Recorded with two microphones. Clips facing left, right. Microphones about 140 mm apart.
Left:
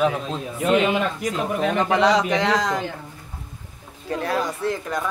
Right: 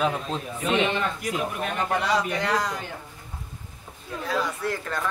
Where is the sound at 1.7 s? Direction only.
90° left.